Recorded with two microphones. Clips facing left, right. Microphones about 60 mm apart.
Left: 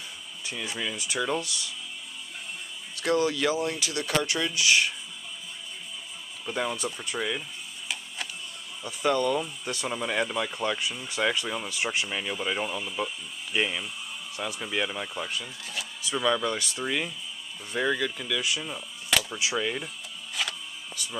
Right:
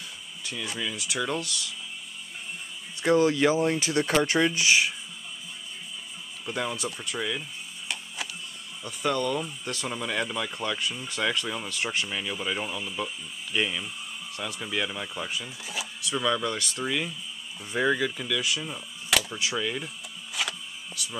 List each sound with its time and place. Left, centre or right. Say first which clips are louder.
0.5 s speech: even; centre
3.0 s speech: right 4 dB; right
6.4 s speech: left 1 dB; centre
8.8 s speech: left 2 dB; centre
15.6 s speech: right 1 dB; centre
16.0 s speech: left 1 dB; centre
17.7 s speech: right 2 dB; centre
19.3 s speech: left 1 dB; centre
20.3 s power windows: right 1 dB; centre